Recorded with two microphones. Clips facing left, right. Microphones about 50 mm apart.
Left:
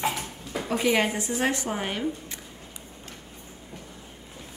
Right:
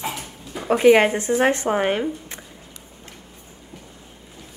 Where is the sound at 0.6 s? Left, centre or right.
Right.